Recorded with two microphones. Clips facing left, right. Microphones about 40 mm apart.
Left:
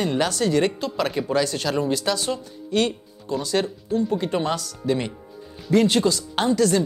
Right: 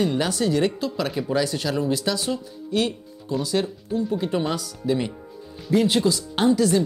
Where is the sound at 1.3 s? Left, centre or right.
Centre.